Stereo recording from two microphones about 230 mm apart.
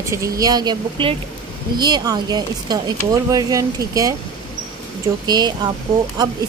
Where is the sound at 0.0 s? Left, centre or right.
Centre.